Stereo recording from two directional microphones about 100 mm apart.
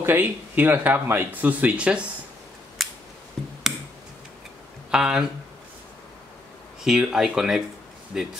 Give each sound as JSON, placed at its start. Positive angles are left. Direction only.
{"t": 0.0, "sound": "speech", "side_deg": -20}
{"t": 2.8, "sound": "scissors", "side_deg": 0}
{"t": 4.9, "sound": "speech", "side_deg": -5}
{"t": 6.8, "sound": "speech", "side_deg": -5}